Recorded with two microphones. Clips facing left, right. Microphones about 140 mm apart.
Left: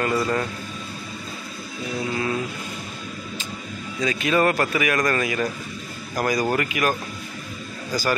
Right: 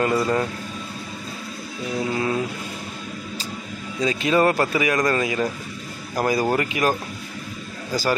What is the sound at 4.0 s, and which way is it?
Speech, 25° right (ahead or behind).